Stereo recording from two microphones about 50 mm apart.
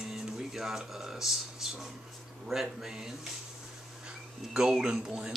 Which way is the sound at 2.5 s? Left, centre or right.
Centre.